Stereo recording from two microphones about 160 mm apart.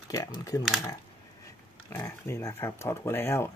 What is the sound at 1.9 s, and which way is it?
Speech, 15° left (ahead or behind).